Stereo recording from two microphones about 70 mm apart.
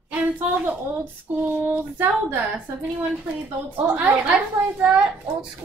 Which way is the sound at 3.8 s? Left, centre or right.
Right.